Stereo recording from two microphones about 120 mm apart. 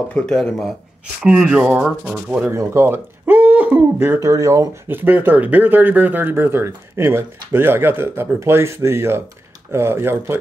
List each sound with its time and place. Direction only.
0.1 s speech: 5° left (ahead or behind)
1.2 s speech: 5° right (ahead or behind)
2.5 s speech: 25° right (ahead or behind)